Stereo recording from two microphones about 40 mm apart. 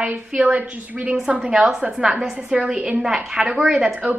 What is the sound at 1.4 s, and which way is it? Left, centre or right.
A woman's voice, centre.